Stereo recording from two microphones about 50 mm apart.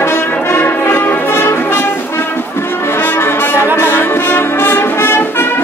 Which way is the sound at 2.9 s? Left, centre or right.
Left.